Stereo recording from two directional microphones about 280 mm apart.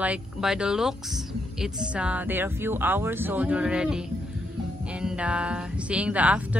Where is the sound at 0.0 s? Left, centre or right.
Centre.